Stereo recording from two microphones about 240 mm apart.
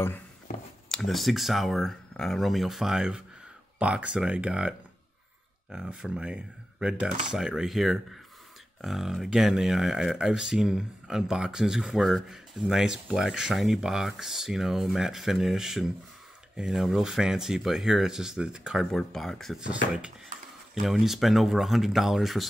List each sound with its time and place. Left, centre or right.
0.8 s speech: centre